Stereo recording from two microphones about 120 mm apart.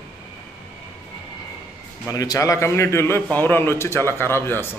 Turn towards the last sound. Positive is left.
turn(degrees=20)  # may be behind; listen again after turning